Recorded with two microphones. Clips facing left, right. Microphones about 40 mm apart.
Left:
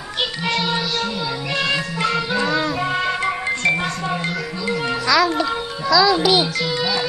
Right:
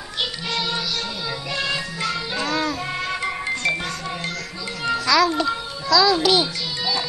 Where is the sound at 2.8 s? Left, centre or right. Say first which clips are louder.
Left 5 dB; left.